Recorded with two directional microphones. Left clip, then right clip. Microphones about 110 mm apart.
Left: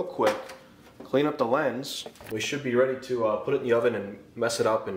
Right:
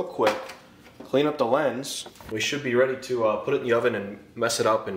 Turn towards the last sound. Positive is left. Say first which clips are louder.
# right 2 dB
turn(degrees=5)  # may be behind; listen again after turning